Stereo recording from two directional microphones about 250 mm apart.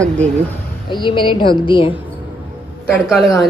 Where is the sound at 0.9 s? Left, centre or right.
Centre.